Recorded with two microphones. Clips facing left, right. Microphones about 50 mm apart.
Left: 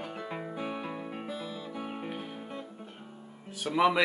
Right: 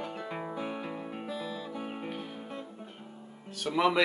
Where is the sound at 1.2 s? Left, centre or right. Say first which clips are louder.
Right 1 dB; left.